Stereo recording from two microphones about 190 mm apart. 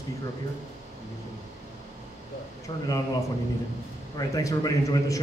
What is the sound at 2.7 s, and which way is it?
Speech, 25° left (ahead or behind).